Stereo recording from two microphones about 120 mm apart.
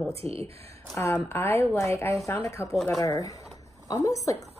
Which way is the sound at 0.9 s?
20° left (ahead or behind).